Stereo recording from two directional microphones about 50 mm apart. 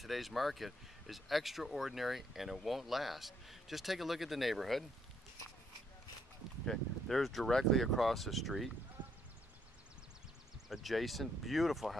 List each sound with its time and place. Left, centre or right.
0.0 s speech: centre
6.6 s speech: centre
9.0 s clip-clop: right
10.7 s speech: centre